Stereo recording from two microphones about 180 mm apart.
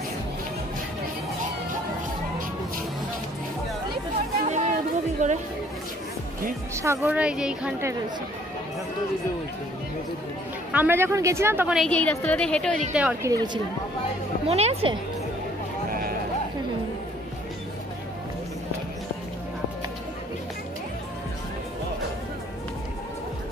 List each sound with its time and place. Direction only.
4.5 s a sound: 40° right (ahead or behind)
5.2 s speech: 40° right (ahead or behind)
6.7 s a woman's voice: 15° right (ahead or behind)
10.7 s a woman's voice: 10° right (ahead or behind)
11.8 s a woman's voice: 10° left (ahead or behind)
12.9 s a woman's voice: 10° right (ahead or behind)
13.3 s speech: 20° right (ahead or behind)
14.5 s speech: 35° right (ahead or behind)
15.9 s sheep: 55° right (ahead or behind)